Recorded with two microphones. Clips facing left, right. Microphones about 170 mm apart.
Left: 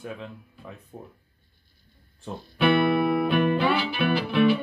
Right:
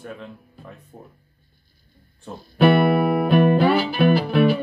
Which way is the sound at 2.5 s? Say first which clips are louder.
Right 5 dB; 40° right (ahead or behind).